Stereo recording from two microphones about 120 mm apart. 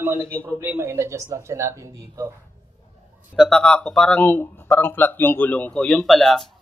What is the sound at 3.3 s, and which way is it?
Speech, 5° left (ahead or behind).